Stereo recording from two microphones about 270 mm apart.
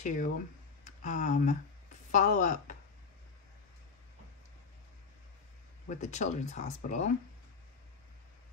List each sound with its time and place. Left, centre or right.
0.0 s speech: left
5.9 s speech: left